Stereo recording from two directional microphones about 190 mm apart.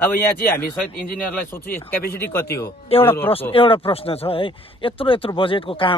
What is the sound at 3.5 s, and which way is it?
Speech, 30° left (ahead or behind).